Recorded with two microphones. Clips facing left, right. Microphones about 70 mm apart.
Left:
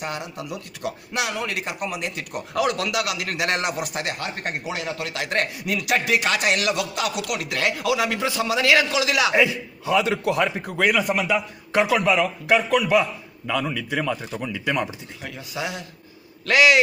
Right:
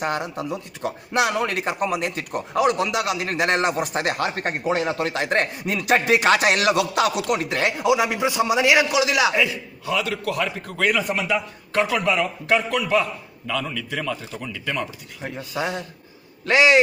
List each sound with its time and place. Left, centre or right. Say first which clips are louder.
0.0 s a man's voice: right 5 dB; right
2.5 s a man's voice: right 3 dB; right
7.2 s a man's voice: right 3 dB; right
9.3 s a man's voice: left 2 dB; left
10.9 s a man's voice: left 1 dB; centre
15.2 s a man's voice: right 4 dB; right